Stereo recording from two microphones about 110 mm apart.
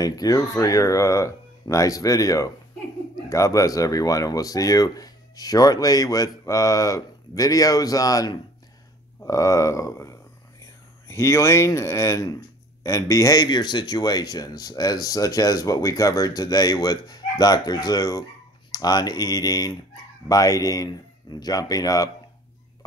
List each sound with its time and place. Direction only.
0.0 s speech: 35° left (ahead or behind)